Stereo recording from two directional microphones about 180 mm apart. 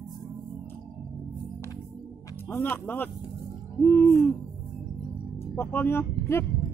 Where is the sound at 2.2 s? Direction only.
10° left (ahead or behind).